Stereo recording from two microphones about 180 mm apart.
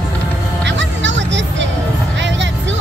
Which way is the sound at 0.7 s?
85° right.